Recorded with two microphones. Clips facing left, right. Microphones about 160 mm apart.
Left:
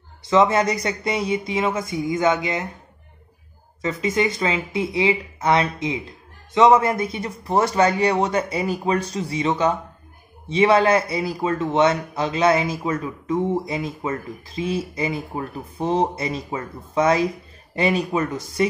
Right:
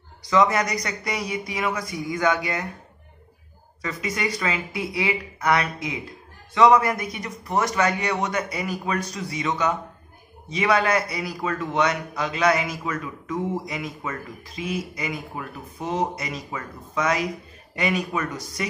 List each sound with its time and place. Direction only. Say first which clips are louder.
0.2 s a man's voice: left 3 dB; 25° left (ahead or behind)
3.8 s a man's voice: left 6 dB; 25° left (ahead or behind)